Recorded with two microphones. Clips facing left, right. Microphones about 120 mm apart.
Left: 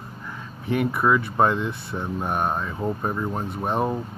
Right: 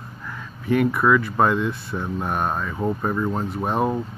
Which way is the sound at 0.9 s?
30° left (ahead or behind).